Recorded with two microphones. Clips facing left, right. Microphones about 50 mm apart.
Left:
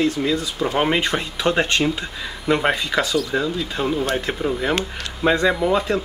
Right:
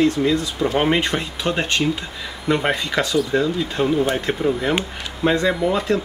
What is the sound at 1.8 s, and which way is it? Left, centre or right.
Speech, centre.